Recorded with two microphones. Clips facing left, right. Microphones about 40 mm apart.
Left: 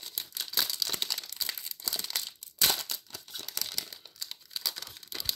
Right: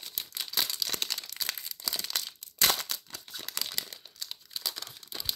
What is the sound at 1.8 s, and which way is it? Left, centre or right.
Crumpling, right.